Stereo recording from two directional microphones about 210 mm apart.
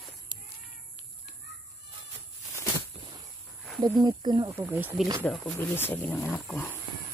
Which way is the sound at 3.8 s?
20° right (ahead or behind).